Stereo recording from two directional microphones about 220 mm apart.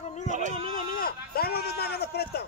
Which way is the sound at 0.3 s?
35° right (ahead or behind).